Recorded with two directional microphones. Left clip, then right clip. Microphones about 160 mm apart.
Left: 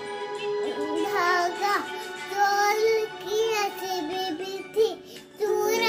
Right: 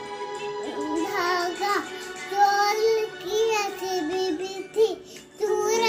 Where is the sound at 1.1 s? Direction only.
20° left (ahead or behind).